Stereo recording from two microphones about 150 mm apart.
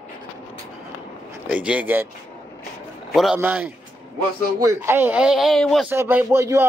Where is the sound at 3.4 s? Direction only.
10° right (ahead or behind).